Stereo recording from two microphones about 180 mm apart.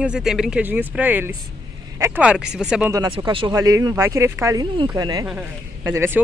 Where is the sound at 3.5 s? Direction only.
20° right (ahead or behind).